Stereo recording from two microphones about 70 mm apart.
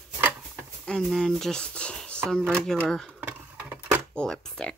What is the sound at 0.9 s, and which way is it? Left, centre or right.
Speech, centre.